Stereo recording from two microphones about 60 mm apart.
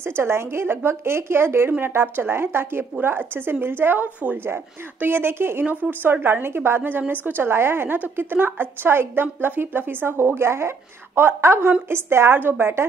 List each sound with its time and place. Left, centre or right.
0.0 s a woman's voice: right